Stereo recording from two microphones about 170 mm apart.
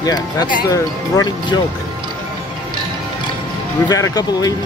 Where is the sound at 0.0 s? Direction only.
25° left (ahead or behind).